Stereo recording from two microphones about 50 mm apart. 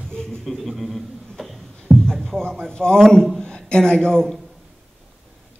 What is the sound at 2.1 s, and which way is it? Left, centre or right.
A man's voice, centre.